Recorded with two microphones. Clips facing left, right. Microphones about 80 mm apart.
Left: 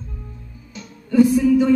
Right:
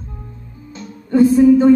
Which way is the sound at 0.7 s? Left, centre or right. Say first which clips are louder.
Right 2 dB; right.